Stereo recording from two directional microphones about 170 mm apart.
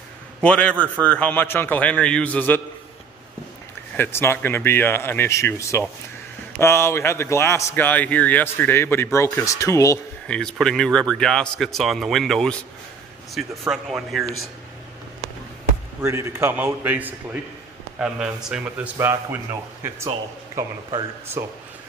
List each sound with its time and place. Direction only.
0.4 s a man's voice: 5° left (ahead or behind)
3.9 s a man's voice: 15° left (ahead or behind)
10.2 s a man's voice: 5° left (ahead or behind)
16.0 s a man's voice: 15° right (ahead or behind)
21.4 s a man's voice: 15° right (ahead or behind)